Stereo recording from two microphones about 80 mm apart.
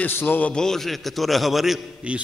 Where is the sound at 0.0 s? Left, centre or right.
Left.